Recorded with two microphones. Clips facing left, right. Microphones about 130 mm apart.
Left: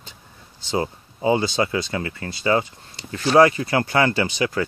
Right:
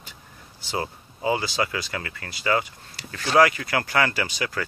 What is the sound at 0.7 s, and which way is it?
Speech, 25° left (ahead or behind).